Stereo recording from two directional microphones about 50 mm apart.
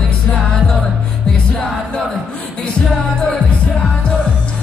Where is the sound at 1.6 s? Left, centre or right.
Centre.